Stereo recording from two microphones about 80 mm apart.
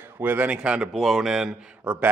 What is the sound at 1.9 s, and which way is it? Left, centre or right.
Speech, centre.